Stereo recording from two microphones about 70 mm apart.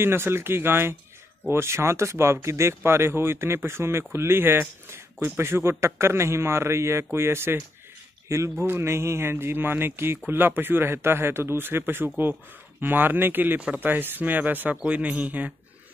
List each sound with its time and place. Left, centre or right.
0.0 s speech: right
8.3 s speech: right